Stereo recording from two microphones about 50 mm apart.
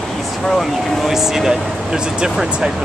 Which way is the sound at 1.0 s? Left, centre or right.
Centre.